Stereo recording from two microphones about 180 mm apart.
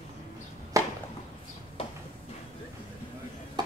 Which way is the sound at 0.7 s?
15° right (ahead or behind).